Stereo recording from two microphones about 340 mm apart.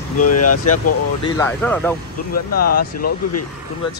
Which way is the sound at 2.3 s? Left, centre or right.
Left.